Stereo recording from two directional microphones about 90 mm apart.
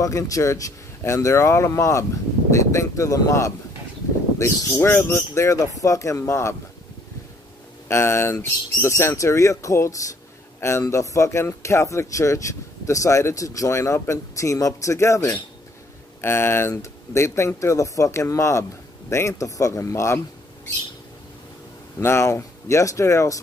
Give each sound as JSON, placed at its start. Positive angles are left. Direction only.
{"t": 0.0, "sound": "speech", "side_deg": 35}
{"t": 7.9, "sound": "speech", "side_deg": 30}
{"t": 22.0, "sound": "speech", "side_deg": 30}